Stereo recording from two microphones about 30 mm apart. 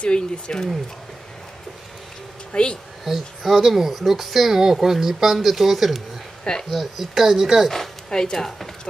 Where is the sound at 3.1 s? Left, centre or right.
Centre.